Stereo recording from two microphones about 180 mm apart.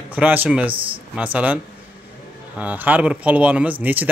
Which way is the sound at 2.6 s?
10° right (ahead or behind).